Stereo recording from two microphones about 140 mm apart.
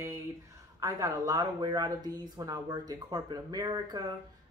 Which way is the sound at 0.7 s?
25° right (ahead or behind).